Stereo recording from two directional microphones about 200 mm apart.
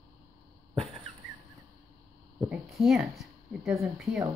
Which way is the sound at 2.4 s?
5° right (ahead or behind).